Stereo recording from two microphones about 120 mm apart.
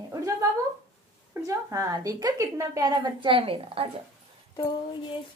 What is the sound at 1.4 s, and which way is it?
Speech, 30° right (ahead or behind).